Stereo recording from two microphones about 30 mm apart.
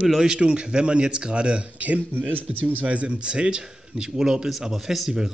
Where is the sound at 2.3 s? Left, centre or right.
Right.